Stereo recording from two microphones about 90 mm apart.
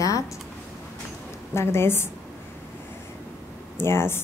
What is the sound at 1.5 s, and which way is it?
Speech, 30° left (ahead or behind).